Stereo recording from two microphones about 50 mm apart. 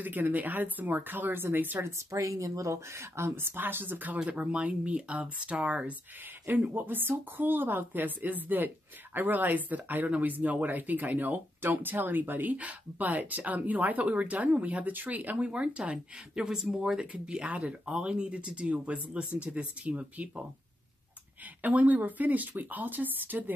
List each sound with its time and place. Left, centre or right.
0.0 s speech: right
1.9 s speech: right
4.3 s speech: right
6.4 s speech: right; by 16.4 s centre
16.4 s speech: centre
17.0 s speech: right
21.6 s speech: right